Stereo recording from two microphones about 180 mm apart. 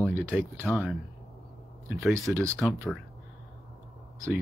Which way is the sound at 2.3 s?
15° right (ahead or behind).